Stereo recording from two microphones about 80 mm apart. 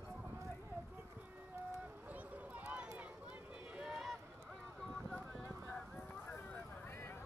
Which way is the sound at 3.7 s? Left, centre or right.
Centre.